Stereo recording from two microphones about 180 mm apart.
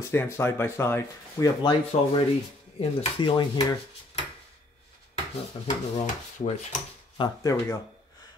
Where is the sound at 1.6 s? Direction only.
30° left (ahead or behind).